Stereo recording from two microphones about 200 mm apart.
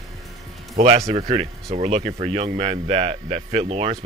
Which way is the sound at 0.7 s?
35° right (ahead or behind).